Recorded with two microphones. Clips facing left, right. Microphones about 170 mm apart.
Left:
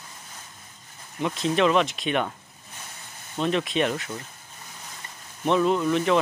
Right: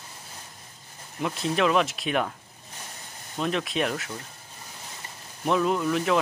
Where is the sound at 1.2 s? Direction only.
Centre (ahead or behind).